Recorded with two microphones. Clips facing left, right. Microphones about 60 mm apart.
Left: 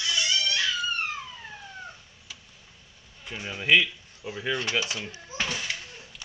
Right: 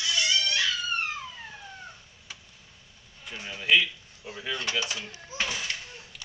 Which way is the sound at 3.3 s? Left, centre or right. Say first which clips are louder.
Left 2 dB; left.